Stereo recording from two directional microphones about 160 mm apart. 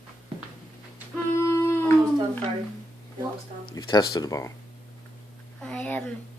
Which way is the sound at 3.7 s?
25° left (ahead or behind).